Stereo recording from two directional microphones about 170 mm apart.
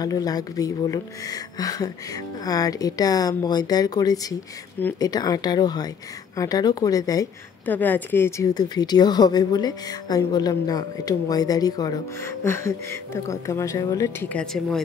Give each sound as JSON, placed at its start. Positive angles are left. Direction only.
{"t": 0.0, "sound": "a woman's voice", "side_deg": 20}
{"t": 14.3, "sound": "speech", "side_deg": 5}